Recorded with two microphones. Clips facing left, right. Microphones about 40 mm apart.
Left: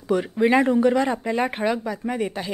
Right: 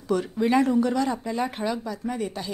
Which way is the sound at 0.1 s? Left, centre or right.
Left.